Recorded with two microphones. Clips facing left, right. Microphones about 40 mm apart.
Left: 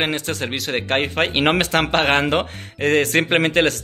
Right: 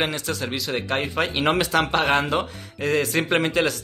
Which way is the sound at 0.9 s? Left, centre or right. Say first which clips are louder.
Left 5 dB; left.